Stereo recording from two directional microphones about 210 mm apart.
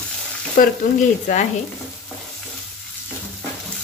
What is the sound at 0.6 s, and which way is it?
Speech, 40° left (ahead or behind).